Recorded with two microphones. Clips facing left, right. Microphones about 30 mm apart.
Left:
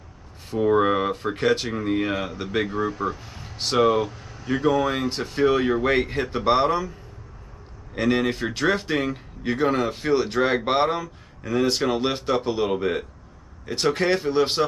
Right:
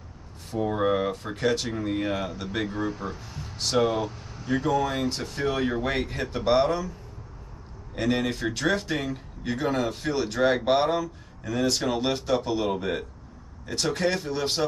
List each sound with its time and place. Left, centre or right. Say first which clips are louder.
0.5 s speech: left 5 dB; left; by 3.5 s centre
3.5 s speech: left 4 dB; left
7.9 s speech: left 4 dB; centre